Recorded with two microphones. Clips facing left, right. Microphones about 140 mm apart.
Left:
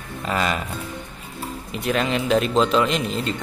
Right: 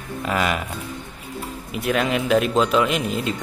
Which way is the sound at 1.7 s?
5° right (ahead or behind).